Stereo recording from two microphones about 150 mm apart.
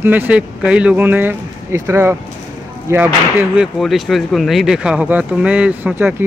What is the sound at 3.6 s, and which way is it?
Speech, centre (ahead or behind).